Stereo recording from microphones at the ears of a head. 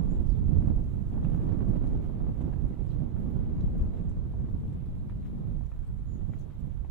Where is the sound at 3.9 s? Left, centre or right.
Right.